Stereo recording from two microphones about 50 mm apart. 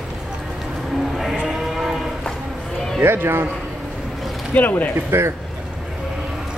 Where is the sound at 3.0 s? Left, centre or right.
Right.